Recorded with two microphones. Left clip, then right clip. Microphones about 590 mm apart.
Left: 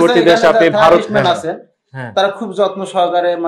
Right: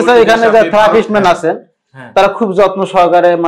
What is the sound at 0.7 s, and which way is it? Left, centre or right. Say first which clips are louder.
A man's voice: right 2 dB; right.